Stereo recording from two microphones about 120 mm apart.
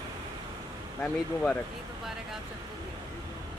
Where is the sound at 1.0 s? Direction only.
10° left (ahead or behind).